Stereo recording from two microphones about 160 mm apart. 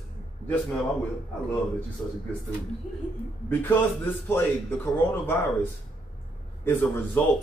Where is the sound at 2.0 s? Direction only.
10° left (ahead or behind).